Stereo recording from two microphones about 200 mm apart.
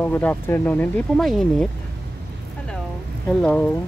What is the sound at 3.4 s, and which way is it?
Speech, 5° left (ahead or behind).